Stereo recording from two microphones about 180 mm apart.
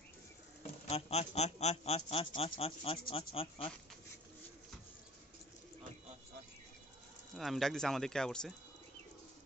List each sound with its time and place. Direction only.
0.8 s speech: 35° left (ahead or behind)
7.3 s speech: centre (ahead or behind)